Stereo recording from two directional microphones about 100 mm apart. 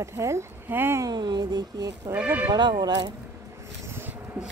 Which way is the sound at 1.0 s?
45° right (ahead or behind).